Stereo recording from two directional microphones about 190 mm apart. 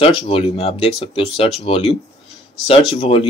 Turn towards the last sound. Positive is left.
turn(degrees=30)  # may be behind; listen again after turning